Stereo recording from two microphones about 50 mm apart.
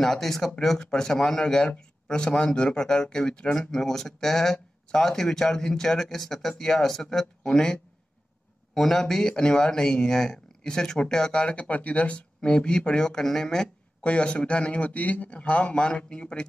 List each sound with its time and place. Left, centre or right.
0.0 s speech: centre
7.4 s speech: centre
8.7 s speech: centre
11.4 s speech: left; by 13.7 s centre
14.0 s a man's voice: left